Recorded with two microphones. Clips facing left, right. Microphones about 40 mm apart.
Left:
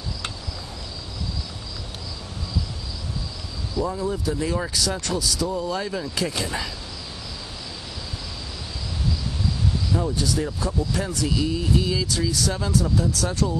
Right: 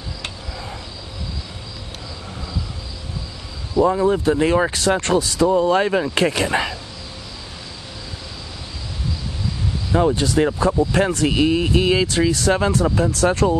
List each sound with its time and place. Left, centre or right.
3.8 s speech: right
9.9 s speech: right